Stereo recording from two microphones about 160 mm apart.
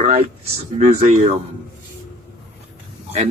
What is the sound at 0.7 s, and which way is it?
Speech, 50° right (ahead or behind).